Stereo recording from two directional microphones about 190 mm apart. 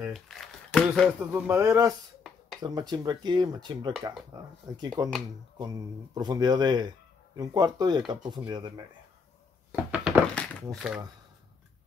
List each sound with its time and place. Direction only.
0.0 s crumpling: centre (ahead or behind)
1.3 s speech: 15° right (ahead or behind)
9.7 s a sound: 5° right (ahead or behind)